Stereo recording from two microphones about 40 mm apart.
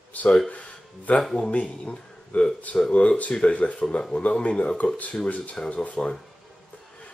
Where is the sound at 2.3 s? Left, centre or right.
Left.